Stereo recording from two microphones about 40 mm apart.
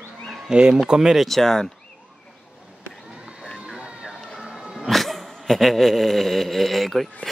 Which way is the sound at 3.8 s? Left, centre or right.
Right.